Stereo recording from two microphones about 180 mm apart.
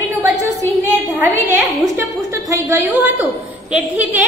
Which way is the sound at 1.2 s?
10° right (ahead or behind).